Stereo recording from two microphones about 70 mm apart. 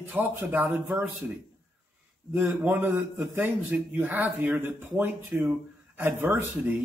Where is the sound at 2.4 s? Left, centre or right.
Right.